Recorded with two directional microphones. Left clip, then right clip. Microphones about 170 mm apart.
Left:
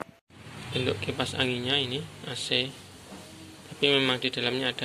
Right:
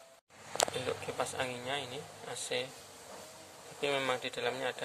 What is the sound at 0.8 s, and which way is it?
A man's voice, 5° right (ahead or behind).